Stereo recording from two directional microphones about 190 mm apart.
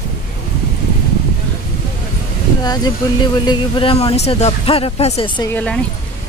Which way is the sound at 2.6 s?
20° left (ahead or behind).